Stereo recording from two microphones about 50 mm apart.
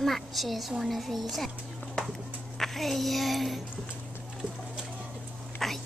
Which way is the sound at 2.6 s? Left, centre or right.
Centre.